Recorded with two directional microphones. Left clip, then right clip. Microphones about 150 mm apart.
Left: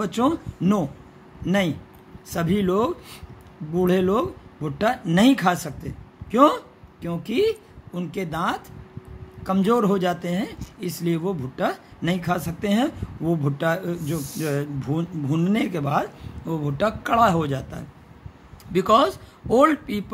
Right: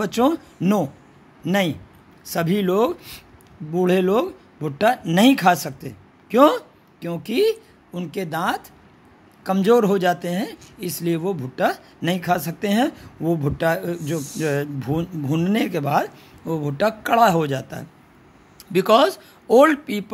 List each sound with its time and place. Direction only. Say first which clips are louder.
0.0 s speech: right 3 dB; 50° right (ahead or behind)